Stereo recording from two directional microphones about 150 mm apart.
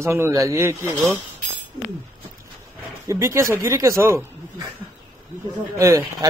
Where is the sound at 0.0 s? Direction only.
20° right (ahead or behind).